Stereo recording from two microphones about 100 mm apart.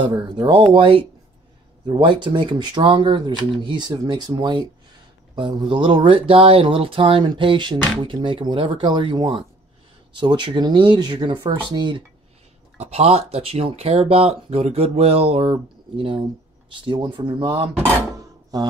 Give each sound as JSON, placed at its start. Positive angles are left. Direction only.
{"t": 0.0, "sound": "speech", "side_deg": -55}
{"t": 12.7, "sound": "speech", "side_deg": -90}
{"t": 15.5, "sound": "speech", "side_deg": -55}
{"t": 18.1, "sound": "a sound", "side_deg": -40}